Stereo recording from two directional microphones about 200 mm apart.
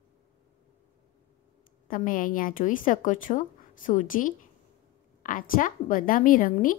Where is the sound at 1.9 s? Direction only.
45° left (ahead or behind).